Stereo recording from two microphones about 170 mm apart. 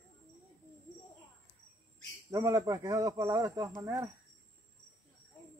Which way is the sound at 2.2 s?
20° right (ahead or behind).